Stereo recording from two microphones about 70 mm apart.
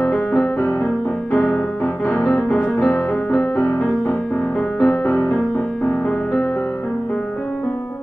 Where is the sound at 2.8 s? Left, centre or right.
Centre.